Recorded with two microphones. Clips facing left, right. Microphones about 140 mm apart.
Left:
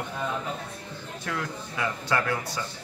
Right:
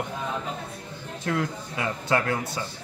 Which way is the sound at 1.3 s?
25° right (ahead or behind).